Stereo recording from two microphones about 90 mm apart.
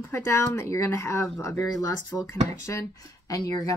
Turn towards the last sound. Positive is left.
turn(degrees=40)  # may be behind; listen again after turning